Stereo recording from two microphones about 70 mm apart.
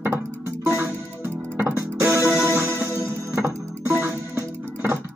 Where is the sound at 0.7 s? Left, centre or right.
Right.